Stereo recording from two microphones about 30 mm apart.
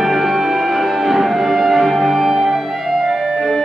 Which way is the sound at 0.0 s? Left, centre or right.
Centre.